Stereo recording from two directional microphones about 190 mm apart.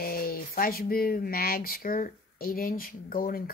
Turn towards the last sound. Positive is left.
turn(degrees=50)  # may be behind; listen again after turning